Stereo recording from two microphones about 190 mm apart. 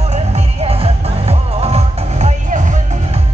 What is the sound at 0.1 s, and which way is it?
Music, 35° right (ahead or behind).